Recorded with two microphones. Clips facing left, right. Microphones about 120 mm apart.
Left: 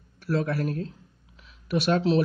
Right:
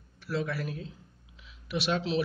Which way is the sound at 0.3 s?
45° left (ahead or behind).